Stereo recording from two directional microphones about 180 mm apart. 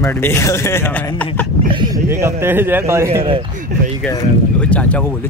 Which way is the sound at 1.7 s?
25° right (ahead or behind).